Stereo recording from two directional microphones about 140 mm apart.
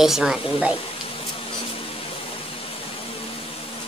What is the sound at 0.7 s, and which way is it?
Speech, 40° left (ahead or behind).